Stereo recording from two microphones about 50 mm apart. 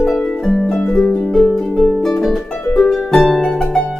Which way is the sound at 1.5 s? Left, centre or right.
Centre.